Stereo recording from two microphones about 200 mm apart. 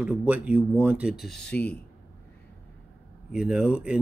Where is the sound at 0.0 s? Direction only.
5° right (ahead or behind).